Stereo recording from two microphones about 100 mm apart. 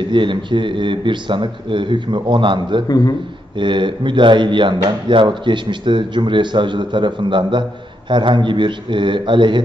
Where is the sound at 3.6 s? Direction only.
55° right (ahead or behind).